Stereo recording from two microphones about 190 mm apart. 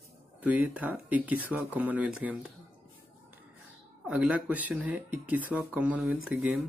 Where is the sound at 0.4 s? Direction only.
10° right (ahead or behind).